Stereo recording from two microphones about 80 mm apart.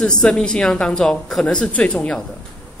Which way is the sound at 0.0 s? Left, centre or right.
Centre.